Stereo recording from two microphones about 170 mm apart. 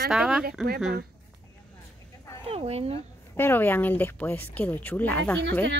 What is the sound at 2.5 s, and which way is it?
Speech, 35° right (ahead or behind).